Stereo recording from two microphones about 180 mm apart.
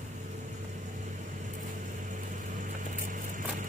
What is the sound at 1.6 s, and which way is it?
Vehicle, 45° right (ahead or behind).